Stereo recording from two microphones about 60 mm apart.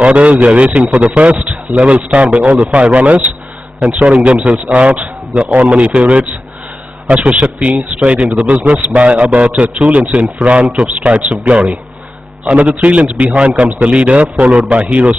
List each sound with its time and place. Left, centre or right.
0.0 s a man's voice: right